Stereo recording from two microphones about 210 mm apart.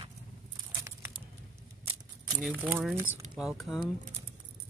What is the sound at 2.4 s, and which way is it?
Speech, 10° right (ahead or behind).